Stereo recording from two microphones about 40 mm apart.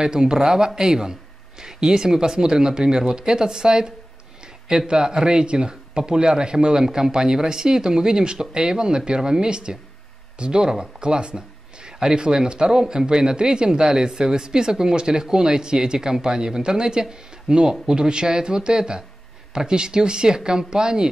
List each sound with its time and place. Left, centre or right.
0.0 s speech: centre